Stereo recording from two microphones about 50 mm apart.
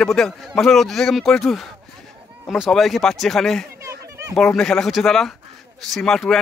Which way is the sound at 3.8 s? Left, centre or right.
Right.